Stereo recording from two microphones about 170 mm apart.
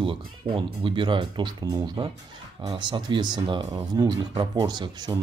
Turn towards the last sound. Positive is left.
turn(degrees=-25)  # may be behind; listen again after turning